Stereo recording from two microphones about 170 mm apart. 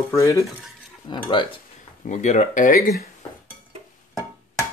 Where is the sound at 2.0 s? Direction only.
45° left (ahead or behind).